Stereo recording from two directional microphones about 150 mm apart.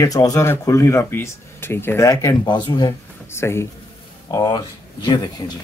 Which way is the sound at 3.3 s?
15° left (ahead or behind).